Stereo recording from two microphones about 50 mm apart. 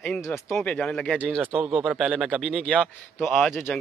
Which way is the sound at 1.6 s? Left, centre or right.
Centre.